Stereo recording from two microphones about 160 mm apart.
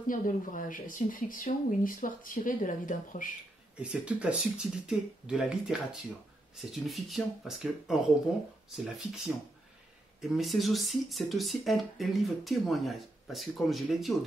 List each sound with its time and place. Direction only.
0.0 s speech: 55° left (ahead or behind)
3.7 s speech: 5° right (ahead or behind)